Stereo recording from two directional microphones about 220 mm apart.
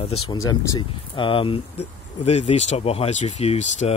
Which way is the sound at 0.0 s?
25° left (ahead or behind).